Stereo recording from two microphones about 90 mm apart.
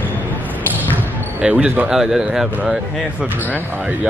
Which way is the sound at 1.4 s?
15° right (ahead or behind).